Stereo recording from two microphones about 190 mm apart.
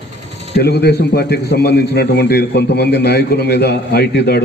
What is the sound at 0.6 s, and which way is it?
A man's voice, 60° left (ahead or behind).